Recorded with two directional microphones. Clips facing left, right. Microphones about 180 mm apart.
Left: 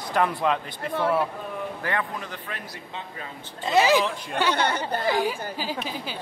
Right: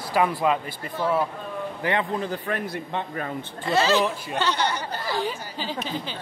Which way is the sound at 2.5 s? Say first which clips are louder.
Right 9 dB; 55° right (ahead or behind).